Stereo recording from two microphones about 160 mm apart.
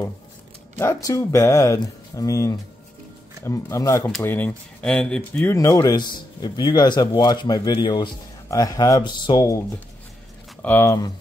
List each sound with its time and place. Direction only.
0.7 s speech: 20° left (ahead or behind)